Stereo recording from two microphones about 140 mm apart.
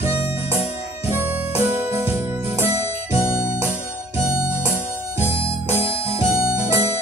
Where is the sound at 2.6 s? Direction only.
50° left (ahead or behind).